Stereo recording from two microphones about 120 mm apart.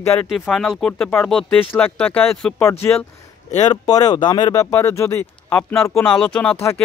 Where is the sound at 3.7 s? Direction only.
35° left (ahead or behind).